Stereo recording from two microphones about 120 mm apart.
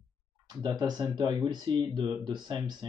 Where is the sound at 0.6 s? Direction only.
35° right (ahead or behind).